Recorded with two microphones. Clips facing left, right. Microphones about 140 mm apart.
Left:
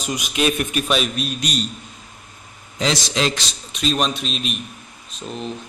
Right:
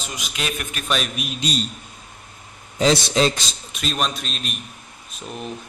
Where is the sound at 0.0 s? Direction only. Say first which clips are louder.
Left 8 dB; 20° left (ahead or behind).